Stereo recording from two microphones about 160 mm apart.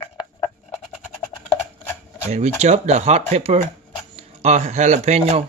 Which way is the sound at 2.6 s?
45° right (ahead or behind).